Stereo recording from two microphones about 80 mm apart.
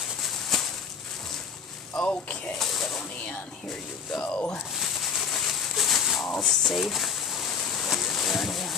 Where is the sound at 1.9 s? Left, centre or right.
Centre.